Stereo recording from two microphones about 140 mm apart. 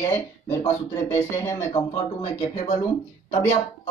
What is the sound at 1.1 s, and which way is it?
Speech, 20° left (ahead or behind).